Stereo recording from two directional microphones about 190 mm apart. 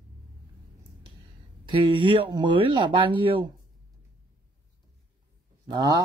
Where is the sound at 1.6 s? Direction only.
25° right (ahead or behind).